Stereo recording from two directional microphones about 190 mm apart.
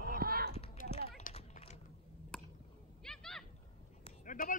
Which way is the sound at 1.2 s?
35° left (ahead or behind).